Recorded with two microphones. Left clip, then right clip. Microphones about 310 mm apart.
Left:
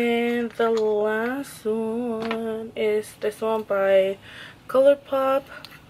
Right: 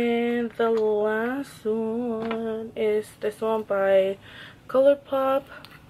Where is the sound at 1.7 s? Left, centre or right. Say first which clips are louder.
Left 1 dB; right.